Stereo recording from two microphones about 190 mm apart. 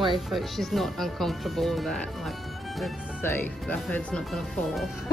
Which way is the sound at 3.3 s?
5° left (ahead or behind).